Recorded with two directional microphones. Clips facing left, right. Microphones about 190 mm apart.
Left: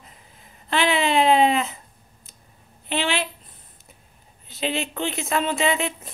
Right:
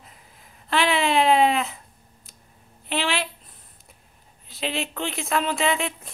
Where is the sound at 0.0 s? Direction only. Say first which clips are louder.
Left 1 dB; centre (ahead or behind).